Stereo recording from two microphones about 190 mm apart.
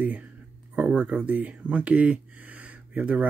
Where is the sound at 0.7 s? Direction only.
5° right (ahead or behind).